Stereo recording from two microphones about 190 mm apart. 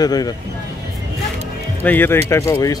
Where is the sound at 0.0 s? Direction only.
20° left (ahead or behind).